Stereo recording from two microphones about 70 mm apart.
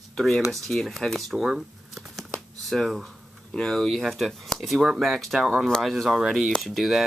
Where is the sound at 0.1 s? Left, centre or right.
Centre.